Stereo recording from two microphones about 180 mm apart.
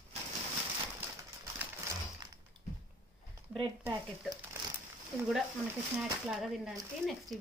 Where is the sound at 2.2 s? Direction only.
20° right (ahead or behind).